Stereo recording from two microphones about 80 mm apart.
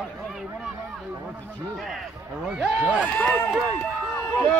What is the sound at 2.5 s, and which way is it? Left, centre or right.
Speech, centre.